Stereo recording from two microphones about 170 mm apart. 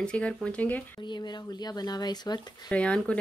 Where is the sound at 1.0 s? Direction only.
25° left (ahead or behind).